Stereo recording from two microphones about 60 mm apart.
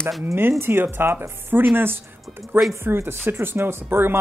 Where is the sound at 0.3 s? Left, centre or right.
Right.